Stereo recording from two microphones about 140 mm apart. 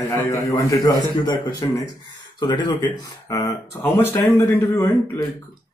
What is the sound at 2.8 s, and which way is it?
Speech, 20° left (ahead or behind).